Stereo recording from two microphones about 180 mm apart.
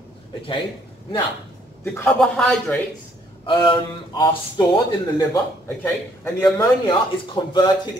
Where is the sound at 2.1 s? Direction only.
5° left (ahead or behind).